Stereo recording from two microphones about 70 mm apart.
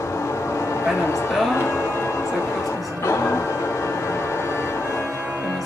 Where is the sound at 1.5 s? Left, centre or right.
Left.